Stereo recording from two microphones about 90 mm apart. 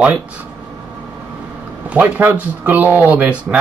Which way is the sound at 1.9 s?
20° right (ahead or behind).